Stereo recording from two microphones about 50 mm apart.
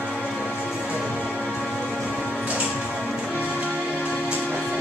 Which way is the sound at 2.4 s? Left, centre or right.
Right.